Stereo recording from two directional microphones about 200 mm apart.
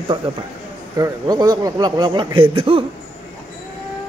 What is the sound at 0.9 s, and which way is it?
A man's voice, 20° right (ahead or behind).